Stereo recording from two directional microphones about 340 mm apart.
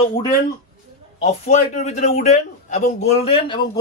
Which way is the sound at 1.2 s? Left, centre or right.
Centre.